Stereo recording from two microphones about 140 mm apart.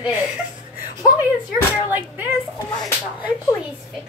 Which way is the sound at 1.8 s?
15° right (ahead or behind).